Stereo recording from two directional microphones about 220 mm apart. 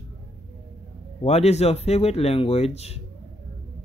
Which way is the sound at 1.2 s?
30° left (ahead or behind).